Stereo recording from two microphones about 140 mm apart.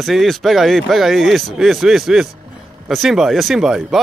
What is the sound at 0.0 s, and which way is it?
Speech, centre (ahead or behind).